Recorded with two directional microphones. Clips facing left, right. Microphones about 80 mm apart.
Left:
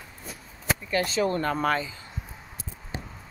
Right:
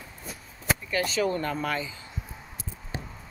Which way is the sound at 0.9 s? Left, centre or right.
Left.